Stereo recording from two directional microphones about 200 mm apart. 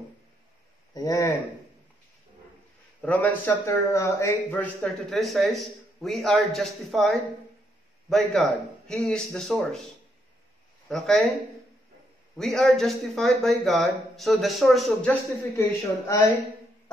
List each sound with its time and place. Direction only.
0.9 s speech: 15° left (ahead or behind)
3.0 s a man's voice: 5° left (ahead or behind)
10.9 s a man's voice: centre (ahead or behind)
12.4 s a man's voice: centre (ahead or behind)